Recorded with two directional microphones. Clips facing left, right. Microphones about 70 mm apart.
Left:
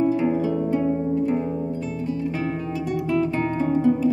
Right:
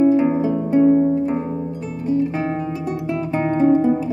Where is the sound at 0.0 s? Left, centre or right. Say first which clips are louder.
Right 5 dB; right.